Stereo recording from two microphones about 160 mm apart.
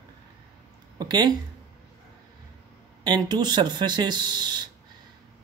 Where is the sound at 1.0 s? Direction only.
25° right (ahead or behind).